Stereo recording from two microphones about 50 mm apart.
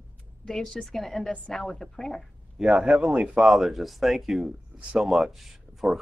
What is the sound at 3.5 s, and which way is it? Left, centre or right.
Speech, centre.